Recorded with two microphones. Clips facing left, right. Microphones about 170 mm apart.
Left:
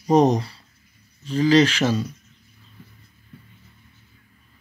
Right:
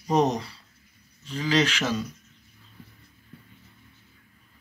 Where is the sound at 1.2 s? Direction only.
40° left (ahead or behind).